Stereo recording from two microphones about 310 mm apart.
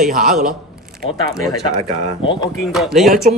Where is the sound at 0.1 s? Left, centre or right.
Right.